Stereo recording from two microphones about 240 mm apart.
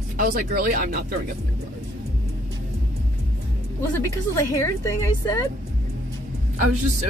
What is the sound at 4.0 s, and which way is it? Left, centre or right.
A woman's voice, centre.